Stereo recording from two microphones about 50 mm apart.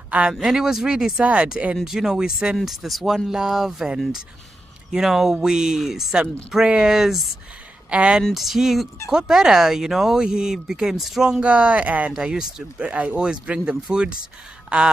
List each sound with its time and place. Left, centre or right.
0.3 s speech: centre
1.2 s speech: right
1.9 s speech: centre
7.9 s speech: right
8.2 s speech: centre
11.2 s speech: right
12.3 s speech: centre